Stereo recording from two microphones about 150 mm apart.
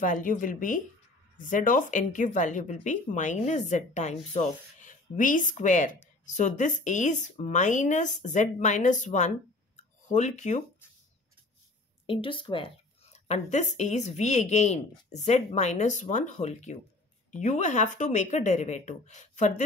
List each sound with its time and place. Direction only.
0.0 s a woman's voice: 60° left (ahead or behind)
9.8 s a sound: 50° left (ahead or behind)
12.1 s speech: 35° left (ahead or behind)
13.1 s a woman's voice: 50° left (ahead or behind)